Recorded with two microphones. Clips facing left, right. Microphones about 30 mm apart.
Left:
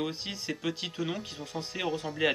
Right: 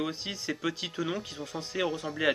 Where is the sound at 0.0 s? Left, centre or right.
Centre.